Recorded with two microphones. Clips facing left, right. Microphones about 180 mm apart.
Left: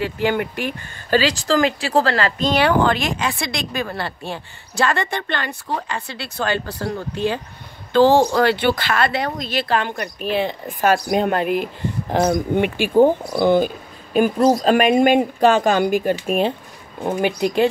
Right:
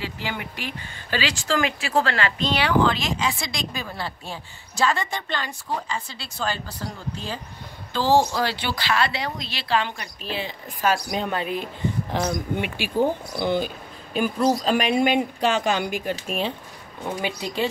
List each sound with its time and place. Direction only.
0.0 s speech: 55° left (ahead or behind)